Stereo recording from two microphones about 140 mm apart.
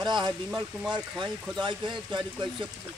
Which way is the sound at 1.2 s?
5° left (ahead or behind).